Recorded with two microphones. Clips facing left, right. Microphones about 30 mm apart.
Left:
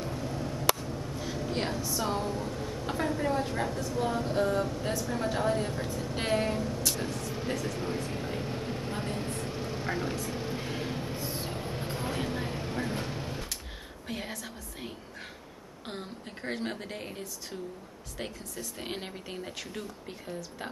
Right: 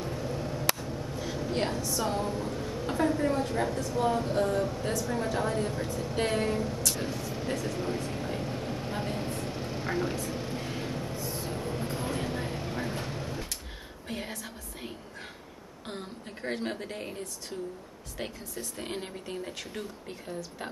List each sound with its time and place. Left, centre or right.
0.1 s a sound: centre
2.9 s speech: centre
6.9 s vehicle: centre
11.1 s a sound: left
11.5 s vehicle: centre
14.0 s a woman's voice: centre
18.8 s speech: centre